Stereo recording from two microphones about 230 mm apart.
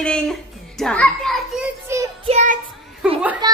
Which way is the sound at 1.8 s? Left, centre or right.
Centre.